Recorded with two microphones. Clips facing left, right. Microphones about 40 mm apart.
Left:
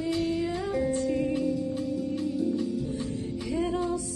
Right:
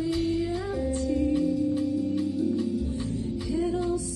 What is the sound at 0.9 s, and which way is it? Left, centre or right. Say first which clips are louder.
Music: even; left.